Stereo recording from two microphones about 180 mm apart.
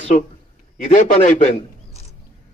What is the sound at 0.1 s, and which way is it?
A man's voice, 45° left (ahead or behind).